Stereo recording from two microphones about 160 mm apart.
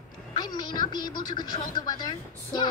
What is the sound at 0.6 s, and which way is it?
A woman's voice, 25° left (ahead or behind).